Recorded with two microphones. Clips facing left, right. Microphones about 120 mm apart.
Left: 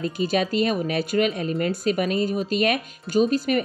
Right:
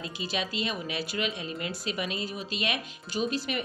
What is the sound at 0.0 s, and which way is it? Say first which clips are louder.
Speech: left 10 dB; 50° left (ahead or behind).